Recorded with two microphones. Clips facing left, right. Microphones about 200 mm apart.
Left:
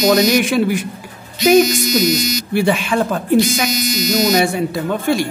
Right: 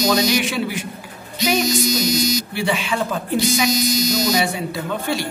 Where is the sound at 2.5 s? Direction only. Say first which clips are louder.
Left 6 dB; 50° left (ahead or behind).